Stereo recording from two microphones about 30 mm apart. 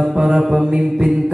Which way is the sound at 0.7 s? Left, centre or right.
Right.